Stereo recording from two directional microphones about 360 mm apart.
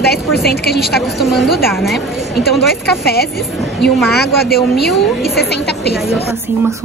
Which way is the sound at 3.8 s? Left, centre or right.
Centre.